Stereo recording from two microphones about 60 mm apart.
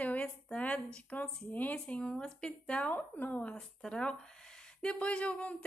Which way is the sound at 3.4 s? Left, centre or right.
Centre.